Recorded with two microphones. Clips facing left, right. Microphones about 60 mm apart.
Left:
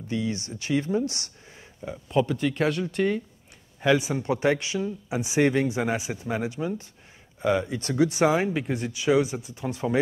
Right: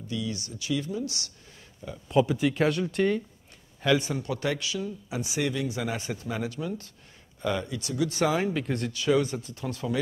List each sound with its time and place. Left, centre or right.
0.1 s speech: left
2.2 s speech: centre
4.1 s speech: left
5.4 s speech: left; by 7.7 s centre
7.7 s speech: left
8.1 s speech: centre